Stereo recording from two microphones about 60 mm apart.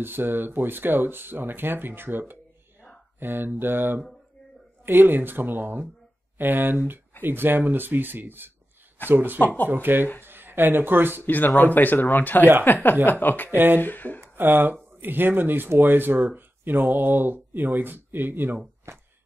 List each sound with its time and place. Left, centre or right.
0.0 s speech: right
11.2 s speech: left
13.5 s speech: right
13.7 s speech: left
14.3 s speech: right
18.9 s a sound: right